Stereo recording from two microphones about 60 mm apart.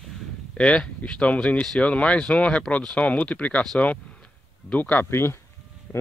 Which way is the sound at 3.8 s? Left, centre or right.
Left.